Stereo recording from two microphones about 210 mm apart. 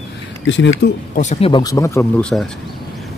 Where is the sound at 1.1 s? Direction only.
35° left (ahead or behind); by 2.3 s 15° left (ahead or behind).